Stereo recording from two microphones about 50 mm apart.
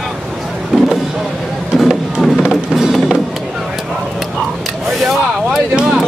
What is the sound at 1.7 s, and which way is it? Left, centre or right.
Music, centre.